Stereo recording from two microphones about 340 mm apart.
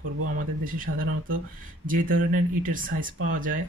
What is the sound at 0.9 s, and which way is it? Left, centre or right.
Speech, right.